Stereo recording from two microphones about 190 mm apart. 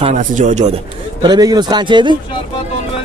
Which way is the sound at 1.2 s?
20° right (ahead or behind).